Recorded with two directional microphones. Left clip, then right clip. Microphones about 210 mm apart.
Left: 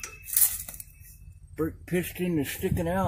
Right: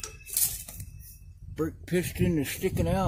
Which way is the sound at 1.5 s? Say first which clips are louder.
Even; 5° left (ahead or behind).